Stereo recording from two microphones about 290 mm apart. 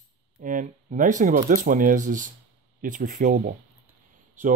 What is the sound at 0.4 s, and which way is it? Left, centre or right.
Speech, right.